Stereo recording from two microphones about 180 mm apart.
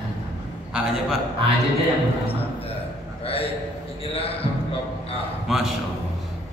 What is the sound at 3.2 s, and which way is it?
Speech, 30° left (ahead or behind).